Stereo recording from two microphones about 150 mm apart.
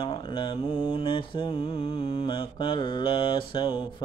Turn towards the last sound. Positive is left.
turn(degrees=35)  # may be behind; listen again after turning